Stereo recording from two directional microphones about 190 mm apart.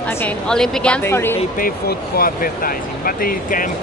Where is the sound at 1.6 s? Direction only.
50° left (ahead or behind).